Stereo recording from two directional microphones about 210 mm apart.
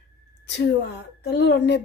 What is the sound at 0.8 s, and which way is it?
Speech, 55° left (ahead or behind).